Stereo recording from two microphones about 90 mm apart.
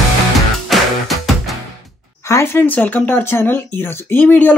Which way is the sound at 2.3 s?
30° left (ahead or behind).